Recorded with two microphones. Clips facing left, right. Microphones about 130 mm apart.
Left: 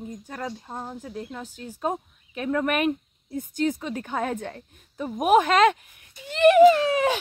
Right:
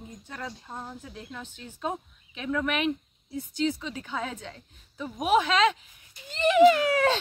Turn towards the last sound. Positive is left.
turn(degrees=20)  # may be behind; listen again after turning